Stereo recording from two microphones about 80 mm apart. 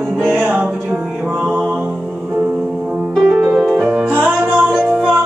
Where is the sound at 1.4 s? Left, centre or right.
Centre.